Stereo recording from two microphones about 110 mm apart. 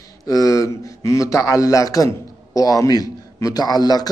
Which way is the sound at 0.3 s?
30° left (ahead or behind).